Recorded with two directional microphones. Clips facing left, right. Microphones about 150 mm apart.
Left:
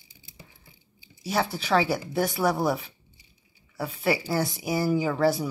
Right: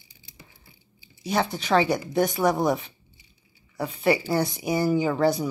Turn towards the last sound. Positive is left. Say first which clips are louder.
# right 1 dB
turn(degrees=5)  # may be behind; listen again after turning